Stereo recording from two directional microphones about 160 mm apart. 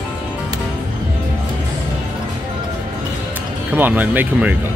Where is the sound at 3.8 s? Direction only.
10° right (ahead or behind).